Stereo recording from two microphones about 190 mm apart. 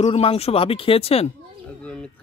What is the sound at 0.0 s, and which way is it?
Speech, 30° left (ahead or behind).